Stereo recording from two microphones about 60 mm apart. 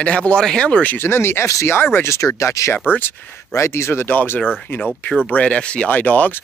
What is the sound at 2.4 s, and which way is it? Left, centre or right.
Speech, left.